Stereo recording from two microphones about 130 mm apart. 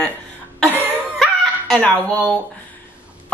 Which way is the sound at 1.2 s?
5° left (ahead or behind).